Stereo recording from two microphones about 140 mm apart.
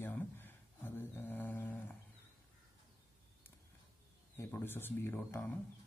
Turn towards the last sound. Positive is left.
turn(degrees=10)  # may be behind; listen again after turning